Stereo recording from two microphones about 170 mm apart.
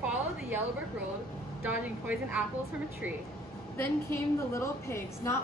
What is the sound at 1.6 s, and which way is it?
Speech, 10° right (ahead or behind).